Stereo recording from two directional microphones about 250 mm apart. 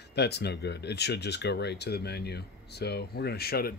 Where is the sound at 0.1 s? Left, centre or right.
Left.